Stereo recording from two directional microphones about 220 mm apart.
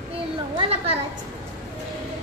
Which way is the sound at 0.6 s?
25° right (ahead or behind).